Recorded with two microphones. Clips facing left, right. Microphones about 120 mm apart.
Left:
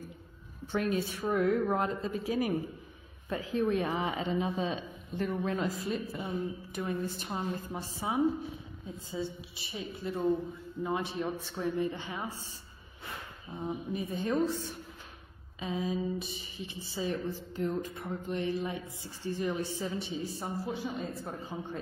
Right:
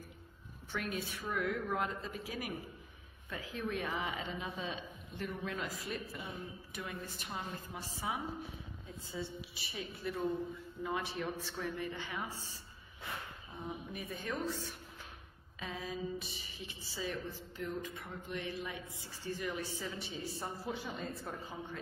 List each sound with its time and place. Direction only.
0.7 s a woman's voice: 30° left (ahead or behind)
13.7 s a woman's voice: 25° left (ahead or behind)
15.6 s a woman's voice: 20° left (ahead or behind)